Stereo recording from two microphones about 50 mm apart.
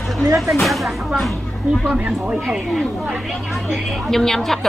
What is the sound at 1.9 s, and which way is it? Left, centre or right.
Speech, right.